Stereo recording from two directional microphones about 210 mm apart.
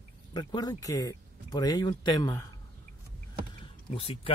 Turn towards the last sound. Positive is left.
turn(degrees=25)  # may be behind; listen again after turning